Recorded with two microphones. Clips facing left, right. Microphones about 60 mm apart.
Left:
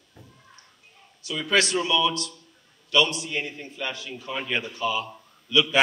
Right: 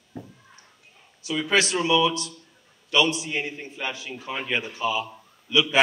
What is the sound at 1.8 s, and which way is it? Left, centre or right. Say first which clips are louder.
A man's voice: right 3 dB; right.